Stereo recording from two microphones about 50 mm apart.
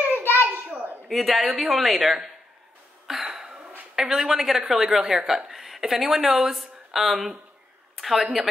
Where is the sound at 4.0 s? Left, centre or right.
Centre.